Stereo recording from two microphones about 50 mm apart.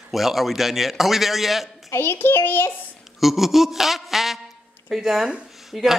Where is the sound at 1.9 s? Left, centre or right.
Left.